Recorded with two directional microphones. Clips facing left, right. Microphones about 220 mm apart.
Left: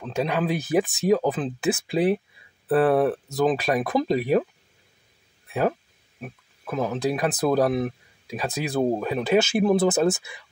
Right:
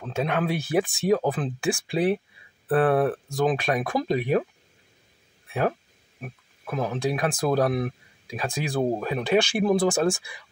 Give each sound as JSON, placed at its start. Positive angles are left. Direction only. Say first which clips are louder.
{"t": 0.1, "sound": "speech", "louder": "left 1 dB", "side_deg": 0}
{"t": 5.5, "sound": "speech", "louder": "left 2 dB", "side_deg": 0}